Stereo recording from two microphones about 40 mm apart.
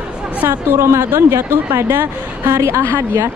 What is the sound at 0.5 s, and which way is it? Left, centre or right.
A woman's voice, right.